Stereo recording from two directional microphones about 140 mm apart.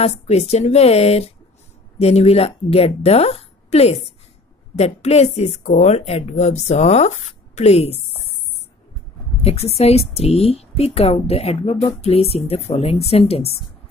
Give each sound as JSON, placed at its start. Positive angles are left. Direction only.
{"t": 0.0, "sound": "speech", "side_deg": 50}
{"t": 9.4, "sound": "speech", "side_deg": 50}